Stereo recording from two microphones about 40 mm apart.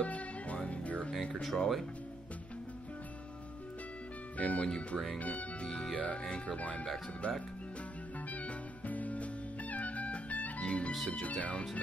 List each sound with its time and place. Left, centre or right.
0.0 s music: left
1.3 s speech: centre
4.4 s speech: left
4.6 s speech: left
5.2 s speech: left
8.3 s music: left
10.6 s speech: left